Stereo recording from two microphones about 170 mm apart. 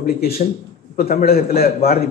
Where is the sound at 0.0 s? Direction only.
65° left (ahead or behind).